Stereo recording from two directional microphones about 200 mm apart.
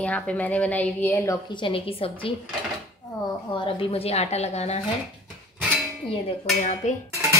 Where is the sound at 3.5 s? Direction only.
25° left (ahead or behind).